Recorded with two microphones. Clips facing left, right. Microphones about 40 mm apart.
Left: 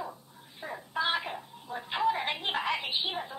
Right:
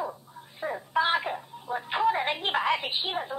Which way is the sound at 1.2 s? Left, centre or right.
Centre.